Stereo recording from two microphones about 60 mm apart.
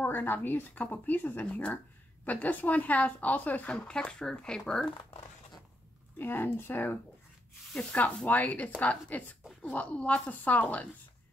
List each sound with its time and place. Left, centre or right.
0.0 s speech: left
3.7 s speech: centre
6.1 s speech: left
8.3 s speech: left